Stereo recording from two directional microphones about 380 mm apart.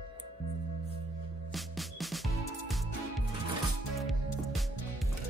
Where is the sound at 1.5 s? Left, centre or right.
Centre.